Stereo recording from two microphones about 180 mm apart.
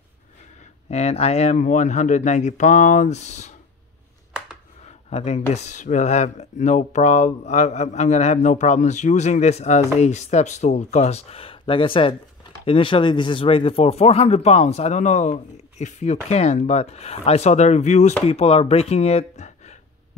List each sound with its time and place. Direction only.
0.8 s speech: 35° left (ahead or behind)
4.8 s speech: 35° left (ahead or behind)